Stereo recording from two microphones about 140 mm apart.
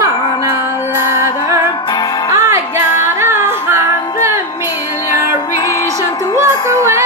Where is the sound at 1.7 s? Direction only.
30° left (ahead or behind).